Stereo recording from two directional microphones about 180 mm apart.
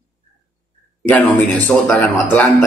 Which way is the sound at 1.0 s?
10° left (ahead or behind).